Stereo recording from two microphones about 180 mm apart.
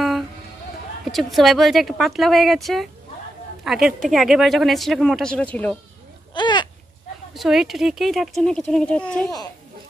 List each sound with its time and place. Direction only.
1.1 s speech: centre (ahead or behind)
6.3 s a sound: 25° left (ahead or behind)
7.3 s speech: centre (ahead or behind)